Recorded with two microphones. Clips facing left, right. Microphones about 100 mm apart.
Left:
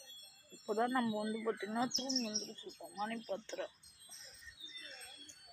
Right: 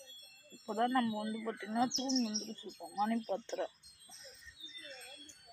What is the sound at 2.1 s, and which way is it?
Speech, centre (ahead or behind).